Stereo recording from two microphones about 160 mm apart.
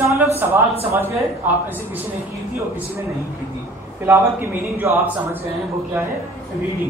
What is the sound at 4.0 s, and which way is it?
Speech, 15° right (ahead or behind).